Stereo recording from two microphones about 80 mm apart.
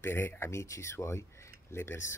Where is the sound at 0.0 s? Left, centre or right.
Left.